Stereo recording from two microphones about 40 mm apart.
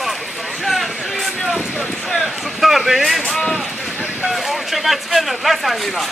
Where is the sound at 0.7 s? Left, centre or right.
Centre.